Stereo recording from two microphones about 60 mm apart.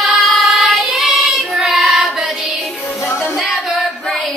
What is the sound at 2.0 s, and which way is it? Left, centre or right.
Music, centre.